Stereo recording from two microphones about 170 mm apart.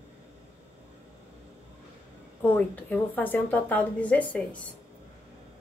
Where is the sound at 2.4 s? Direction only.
10° left (ahead or behind).